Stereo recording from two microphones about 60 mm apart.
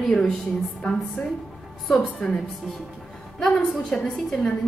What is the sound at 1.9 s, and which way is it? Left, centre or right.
Speech, centre.